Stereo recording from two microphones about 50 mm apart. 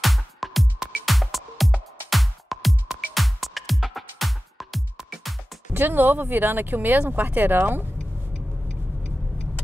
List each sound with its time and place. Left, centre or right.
0.0 s music: centre
5.7 s speech: right